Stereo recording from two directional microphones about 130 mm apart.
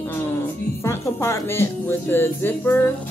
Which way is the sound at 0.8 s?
20° left (ahead or behind).